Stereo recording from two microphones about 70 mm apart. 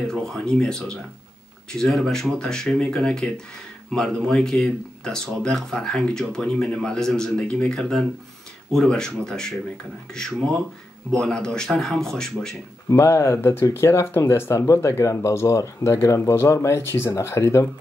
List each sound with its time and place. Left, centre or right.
0.1 s speech: centre
12.9 s speech: left